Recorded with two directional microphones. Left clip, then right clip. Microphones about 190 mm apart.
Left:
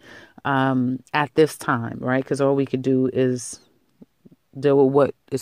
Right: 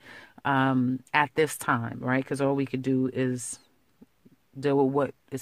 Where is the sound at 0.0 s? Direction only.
20° left (ahead or behind).